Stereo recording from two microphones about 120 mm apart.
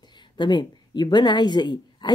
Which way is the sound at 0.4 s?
40° left (ahead or behind).